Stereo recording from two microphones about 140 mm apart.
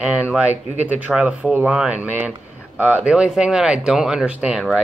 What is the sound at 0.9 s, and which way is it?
Speech, 10° right (ahead or behind).